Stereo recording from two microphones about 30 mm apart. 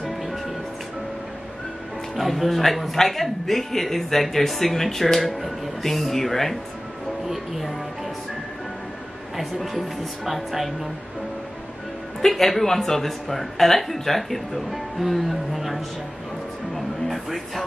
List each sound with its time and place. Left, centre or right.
0.0 s music: centre
2.1 s a man's voice: centre
7.2 s speech: centre
9.4 s a woman's voice: centre
12.3 s a man's voice: centre
16.7 s a sound: centre